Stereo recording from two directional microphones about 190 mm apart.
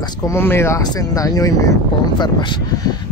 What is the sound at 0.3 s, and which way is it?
Speech, 10° left (ahead or behind).